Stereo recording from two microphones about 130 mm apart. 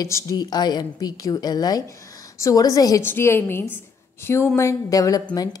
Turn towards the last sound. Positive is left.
turn(degrees=30)  # may be behind; listen again after turning